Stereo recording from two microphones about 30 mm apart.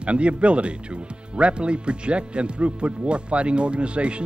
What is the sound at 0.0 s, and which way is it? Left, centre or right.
Speech, right.